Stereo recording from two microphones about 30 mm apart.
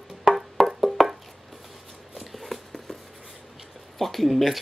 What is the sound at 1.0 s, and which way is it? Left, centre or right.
Chopping, centre.